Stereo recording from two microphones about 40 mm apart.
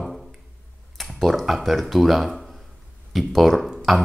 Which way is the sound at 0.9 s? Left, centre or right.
Centre.